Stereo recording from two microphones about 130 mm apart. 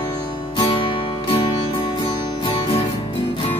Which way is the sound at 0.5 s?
40° left (ahead or behind).